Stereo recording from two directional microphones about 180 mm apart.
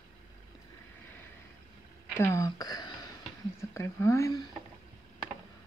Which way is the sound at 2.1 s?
15° left (ahead or behind).